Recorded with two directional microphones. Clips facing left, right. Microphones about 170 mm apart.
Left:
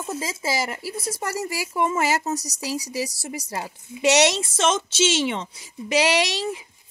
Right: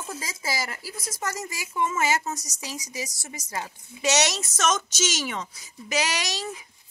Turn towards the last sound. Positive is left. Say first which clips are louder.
# left 8 dB
turn(degrees=25)  # may be behind; listen again after turning